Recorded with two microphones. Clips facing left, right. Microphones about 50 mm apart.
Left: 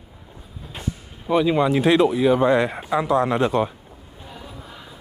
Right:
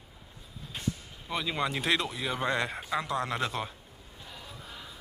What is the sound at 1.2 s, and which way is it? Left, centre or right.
Speech, centre.